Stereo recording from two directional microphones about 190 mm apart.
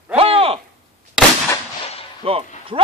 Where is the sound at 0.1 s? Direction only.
30° right (ahead or behind).